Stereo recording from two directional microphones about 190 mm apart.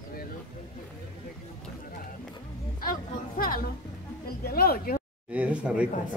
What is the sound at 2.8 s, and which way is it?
Music, 50° left (ahead or behind).